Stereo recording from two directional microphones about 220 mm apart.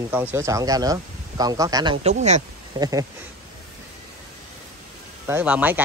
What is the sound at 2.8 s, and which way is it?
Speech, 15° right (ahead or behind).